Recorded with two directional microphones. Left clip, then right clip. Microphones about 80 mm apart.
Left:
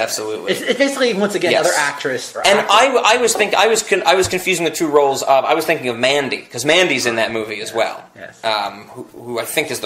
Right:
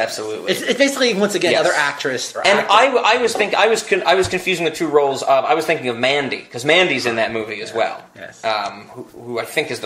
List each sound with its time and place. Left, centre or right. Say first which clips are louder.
0.5 s speech: even; right
2.6 s a man's voice: even; left